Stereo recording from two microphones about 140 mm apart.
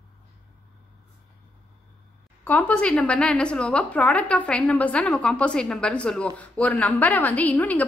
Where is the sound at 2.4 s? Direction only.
10° left (ahead or behind).